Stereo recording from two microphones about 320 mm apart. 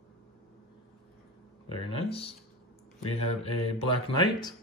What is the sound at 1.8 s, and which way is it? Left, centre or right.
Speech, centre.